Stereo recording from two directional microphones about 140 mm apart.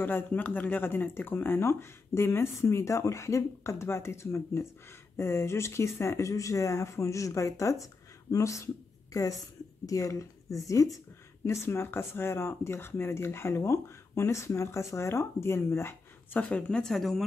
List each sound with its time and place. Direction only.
0.0 s a woman's voice: 15° left (ahead or behind)